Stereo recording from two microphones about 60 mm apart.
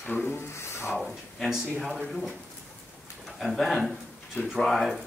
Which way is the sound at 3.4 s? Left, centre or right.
Centre.